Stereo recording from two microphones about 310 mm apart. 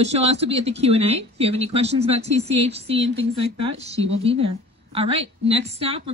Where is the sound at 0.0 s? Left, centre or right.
Centre.